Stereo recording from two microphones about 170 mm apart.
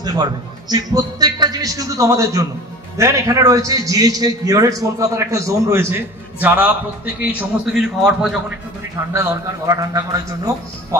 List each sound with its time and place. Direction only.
0.0 s a man's voice: 25° right (ahead or behind); by 8.5 s 5° right (ahead or behind)
9.1 s a man's voice: 15° right (ahead or behind)